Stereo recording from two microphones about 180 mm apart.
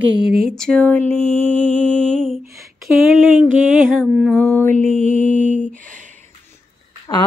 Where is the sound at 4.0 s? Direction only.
Centre (ahead or behind).